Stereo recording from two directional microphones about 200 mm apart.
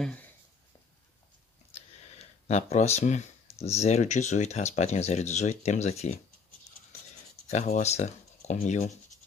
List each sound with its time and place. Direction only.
0.0 s speech: 5° left (ahead or behind)
2.4 s speech: 35° left (ahead or behind)
7.4 s speech: 35° left (ahead or behind)